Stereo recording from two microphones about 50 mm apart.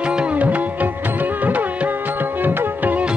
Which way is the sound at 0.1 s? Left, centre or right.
Right.